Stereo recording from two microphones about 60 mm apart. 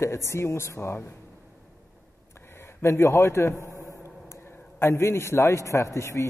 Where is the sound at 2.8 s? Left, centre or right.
Left.